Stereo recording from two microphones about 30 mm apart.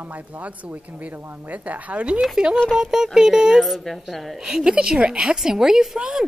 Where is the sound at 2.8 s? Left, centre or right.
Centre.